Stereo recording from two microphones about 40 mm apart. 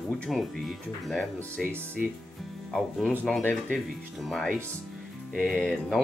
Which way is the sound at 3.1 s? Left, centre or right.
Centre.